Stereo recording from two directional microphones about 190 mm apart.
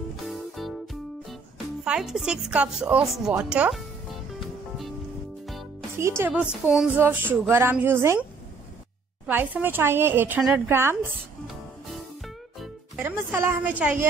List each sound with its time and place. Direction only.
0.1 s music: centre (ahead or behind)
1.9 s speech: centre (ahead or behind)
4.4 s music: centre (ahead or behind)
5.9 s a woman's voice: 15° right (ahead or behind)
9.3 s a woman's voice: 10° right (ahead or behind)
12.5 s music: centre (ahead or behind)
13.0 s a woman's voice: 10° right (ahead or behind)